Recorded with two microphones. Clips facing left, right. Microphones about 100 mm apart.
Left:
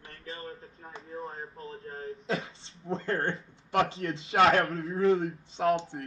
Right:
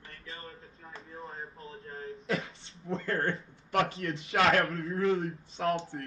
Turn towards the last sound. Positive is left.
turn(degrees=35)  # may be behind; listen again after turning